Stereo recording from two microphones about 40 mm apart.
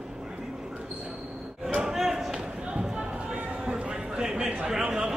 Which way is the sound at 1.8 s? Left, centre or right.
Centre.